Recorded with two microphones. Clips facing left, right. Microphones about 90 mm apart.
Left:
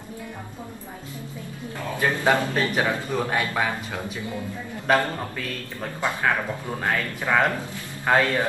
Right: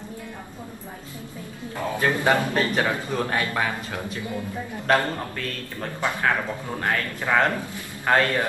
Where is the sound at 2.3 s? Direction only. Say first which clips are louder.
Left 1 dB; 10° left (ahead or behind).